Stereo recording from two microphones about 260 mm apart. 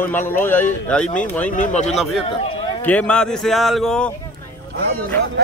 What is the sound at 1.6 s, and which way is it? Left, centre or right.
Speech, left.